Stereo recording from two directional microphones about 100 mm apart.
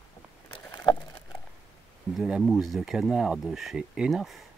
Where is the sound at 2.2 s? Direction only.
5° right (ahead or behind).